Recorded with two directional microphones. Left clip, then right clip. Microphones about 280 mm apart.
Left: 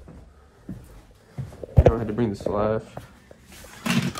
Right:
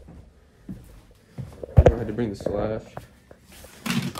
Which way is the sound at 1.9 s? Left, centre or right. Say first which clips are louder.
Left 2 dB; centre.